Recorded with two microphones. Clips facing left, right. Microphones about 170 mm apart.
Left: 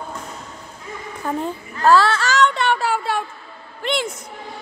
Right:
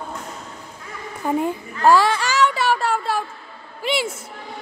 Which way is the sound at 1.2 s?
15° right (ahead or behind).